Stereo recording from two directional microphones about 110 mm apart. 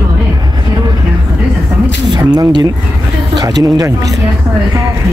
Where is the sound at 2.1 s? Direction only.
35° right (ahead or behind).